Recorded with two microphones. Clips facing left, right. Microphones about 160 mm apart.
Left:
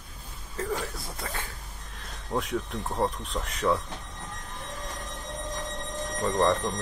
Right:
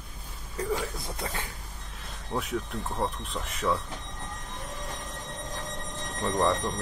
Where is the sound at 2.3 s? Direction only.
Centre (ahead or behind).